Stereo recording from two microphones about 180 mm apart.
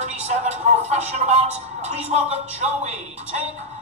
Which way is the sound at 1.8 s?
35° right (ahead or behind).